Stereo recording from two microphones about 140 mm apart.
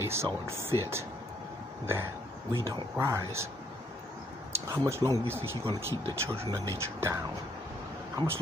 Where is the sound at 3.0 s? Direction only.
20° right (ahead or behind).